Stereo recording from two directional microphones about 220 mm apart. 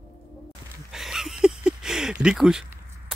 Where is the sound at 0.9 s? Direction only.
Centre (ahead or behind).